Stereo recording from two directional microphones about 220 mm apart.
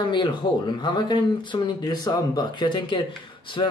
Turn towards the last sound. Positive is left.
turn(degrees=20)  # may be behind; listen again after turning